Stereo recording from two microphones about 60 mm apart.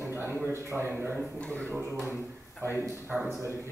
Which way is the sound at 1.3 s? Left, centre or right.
Left.